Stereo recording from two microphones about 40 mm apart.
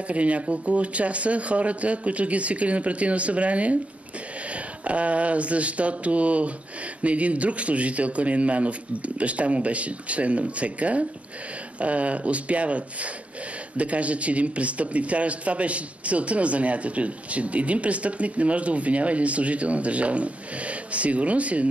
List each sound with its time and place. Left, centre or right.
0.1 s a man's voice: right
4.8 s a man's voice: right